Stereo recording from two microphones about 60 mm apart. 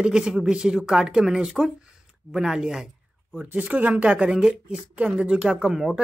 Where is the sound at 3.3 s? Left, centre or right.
Right.